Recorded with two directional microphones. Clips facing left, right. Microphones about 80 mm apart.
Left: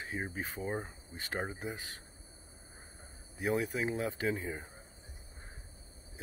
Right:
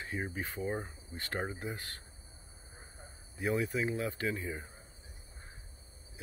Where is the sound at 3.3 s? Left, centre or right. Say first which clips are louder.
Even; centre.